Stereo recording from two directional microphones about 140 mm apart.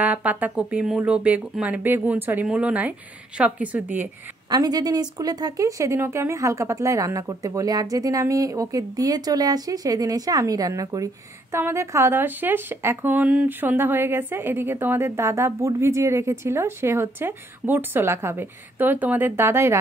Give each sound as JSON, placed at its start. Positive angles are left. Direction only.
{"t": 0.0, "sound": "speech", "side_deg": -10}
{"t": 4.5, "sound": "speech", "side_deg": -30}